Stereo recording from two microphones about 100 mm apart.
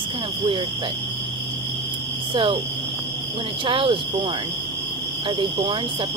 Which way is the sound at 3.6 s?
60° right (ahead or behind).